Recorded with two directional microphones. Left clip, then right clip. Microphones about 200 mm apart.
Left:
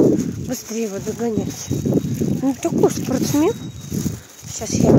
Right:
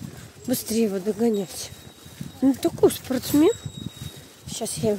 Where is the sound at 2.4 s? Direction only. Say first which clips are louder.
Left 1 dB; 10° right (ahead or behind).